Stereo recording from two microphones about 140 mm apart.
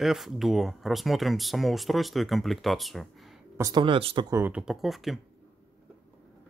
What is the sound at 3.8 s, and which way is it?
Speech, 40° right (ahead or behind).